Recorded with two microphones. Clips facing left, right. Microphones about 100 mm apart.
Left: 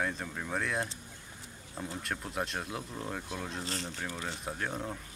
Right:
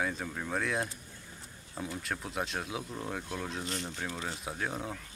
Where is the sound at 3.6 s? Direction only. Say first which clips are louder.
Right 1 dB; 35° left (ahead or behind).